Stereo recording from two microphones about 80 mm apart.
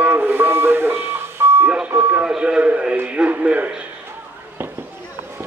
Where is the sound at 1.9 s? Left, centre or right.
Right.